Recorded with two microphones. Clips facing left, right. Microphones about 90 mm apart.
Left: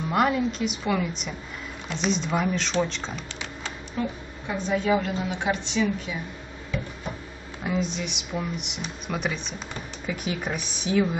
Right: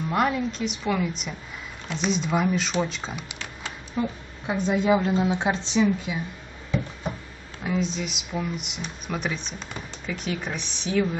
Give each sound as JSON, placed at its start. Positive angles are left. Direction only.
{"t": 0.1, "sound": "a woman's voice", "side_deg": 0}
{"t": 7.6, "sound": "speech", "side_deg": 0}